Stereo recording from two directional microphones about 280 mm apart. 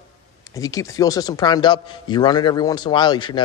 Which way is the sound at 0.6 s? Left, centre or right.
Centre.